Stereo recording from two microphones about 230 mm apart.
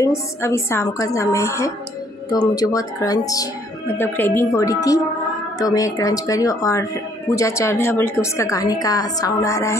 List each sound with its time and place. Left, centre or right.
0.0 s a woman's voice: centre